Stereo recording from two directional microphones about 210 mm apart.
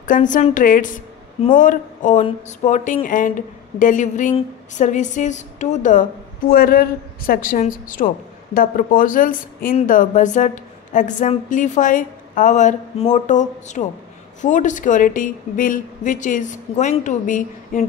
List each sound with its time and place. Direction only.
0.0 s a woman's voice: 40° left (ahead or behind)